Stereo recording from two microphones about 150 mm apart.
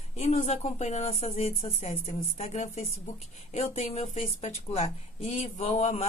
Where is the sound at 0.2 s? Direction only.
45° left (ahead or behind).